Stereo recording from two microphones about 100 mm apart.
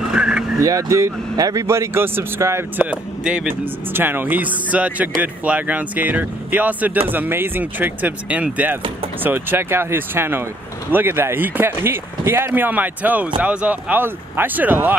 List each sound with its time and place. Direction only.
0.1 s vehicle: 5° right (ahead or behind)
0.6 s speech: 35° right (ahead or behind)
2.8 s speech: 15° right (ahead or behind)